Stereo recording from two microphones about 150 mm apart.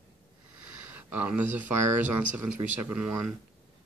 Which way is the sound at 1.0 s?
10° right (ahead or behind).